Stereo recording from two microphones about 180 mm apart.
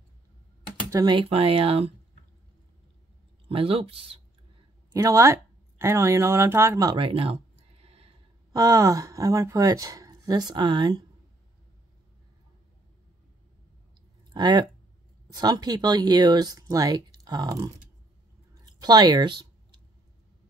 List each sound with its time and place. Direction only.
0.8 s speech: 20° right (ahead or behind)
3.4 s speech: 30° right (ahead or behind)
4.9 s speech: 15° right (ahead or behind); by 8.1 s 35° right (ahead or behind)
8.5 s speech: 20° right (ahead or behind)
14.3 s speech: 25° right (ahead or behind)
18.6 s a sound: 20° right (ahead or behind)